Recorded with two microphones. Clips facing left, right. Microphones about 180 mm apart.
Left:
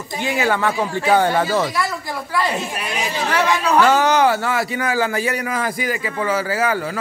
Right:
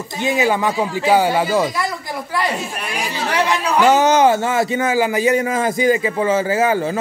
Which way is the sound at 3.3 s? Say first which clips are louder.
Left 1 dB; 15° right (ahead or behind).